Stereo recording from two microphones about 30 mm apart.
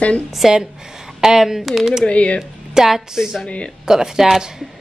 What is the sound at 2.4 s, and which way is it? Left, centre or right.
Speech, centre.